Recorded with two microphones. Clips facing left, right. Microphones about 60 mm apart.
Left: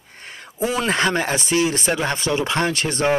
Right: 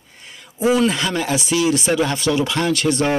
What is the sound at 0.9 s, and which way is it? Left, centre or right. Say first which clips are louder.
Speech: left 1 dB; left.